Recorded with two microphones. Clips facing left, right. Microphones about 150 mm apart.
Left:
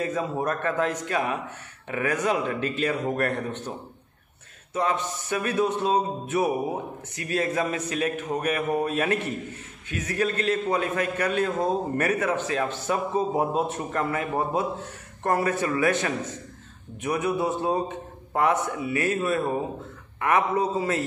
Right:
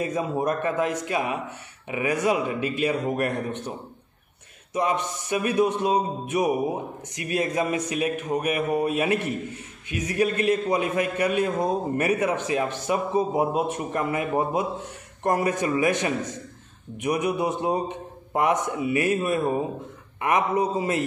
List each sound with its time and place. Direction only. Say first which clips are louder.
0.0 s a man's voice: right 2 dB; 15° right (ahead or behind)
4.7 s a man's voice: right 1 dB; 15° right (ahead or behind)